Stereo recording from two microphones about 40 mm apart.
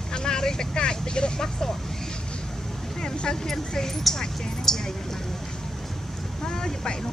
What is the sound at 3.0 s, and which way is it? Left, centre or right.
Vehicle, centre.